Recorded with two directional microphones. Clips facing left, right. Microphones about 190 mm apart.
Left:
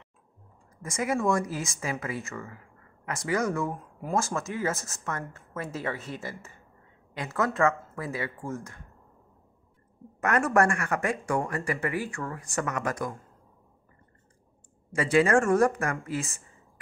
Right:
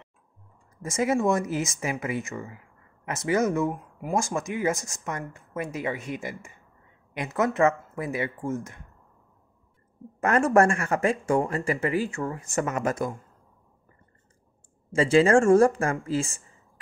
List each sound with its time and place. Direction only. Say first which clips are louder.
0.8 s speech: right 3 dB; 25° right (ahead or behind)
10.2 s speech: right 4 dB; 25° right (ahead or behind)
14.9 s speech: right 4 dB; 25° right (ahead or behind)